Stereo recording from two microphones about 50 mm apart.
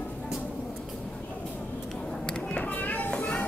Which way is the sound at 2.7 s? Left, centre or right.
Left.